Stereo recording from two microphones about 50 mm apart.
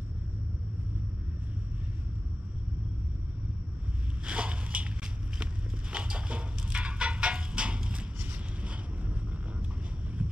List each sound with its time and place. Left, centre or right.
4.3 s biting: right
5.4 s a sound: right
8.3 s vehicle: right